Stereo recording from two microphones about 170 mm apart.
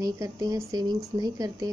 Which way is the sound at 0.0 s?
20° right (ahead or behind).